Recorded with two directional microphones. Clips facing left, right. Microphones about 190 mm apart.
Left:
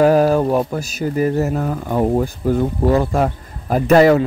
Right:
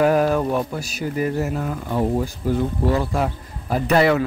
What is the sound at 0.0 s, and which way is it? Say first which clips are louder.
Speech: left 4 dB; 35° left (ahead or behind).